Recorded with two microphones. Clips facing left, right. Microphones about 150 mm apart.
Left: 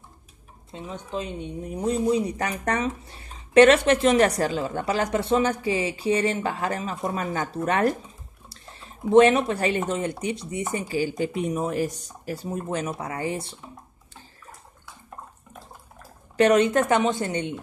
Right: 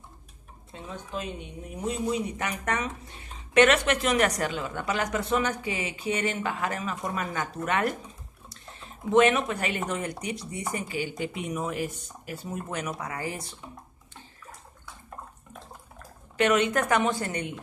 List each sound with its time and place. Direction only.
0.8 s a woman's voice: 25° left (ahead or behind)
9.1 s speech: 30° left (ahead or behind)
11.0 s a woman's voice: 40° left (ahead or behind)
16.3 s speech: 35° left (ahead or behind)